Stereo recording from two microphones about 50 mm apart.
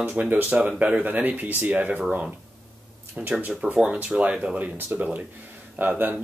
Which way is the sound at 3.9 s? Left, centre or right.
Right.